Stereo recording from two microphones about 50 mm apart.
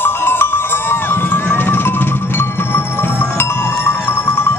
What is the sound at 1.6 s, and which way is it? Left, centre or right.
Music, left.